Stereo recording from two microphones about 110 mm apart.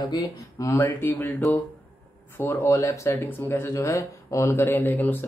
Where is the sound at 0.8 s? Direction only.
15° left (ahead or behind).